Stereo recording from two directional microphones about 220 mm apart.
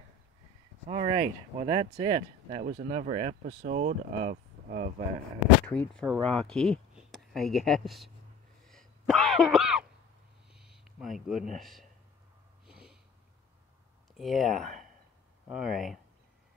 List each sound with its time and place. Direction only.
0.8 s speech: 25° right (ahead or behind)
2.6 s speech: 35° right (ahead or behind)
3.4 s speech: 40° right (ahead or behind)
5.7 s speech: 5° left (ahead or behind)
8.6 s sneeze: centre (ahead or behind)
10.5 s a sound: centre (ahead or behind)
12.6 s snort: centre (ahead or behind)
14.1 s speech: centre (ahead or behind)